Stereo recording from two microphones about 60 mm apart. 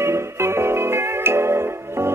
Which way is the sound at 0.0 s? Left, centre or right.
Right.